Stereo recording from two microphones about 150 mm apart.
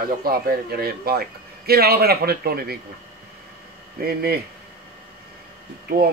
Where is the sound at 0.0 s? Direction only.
80° right.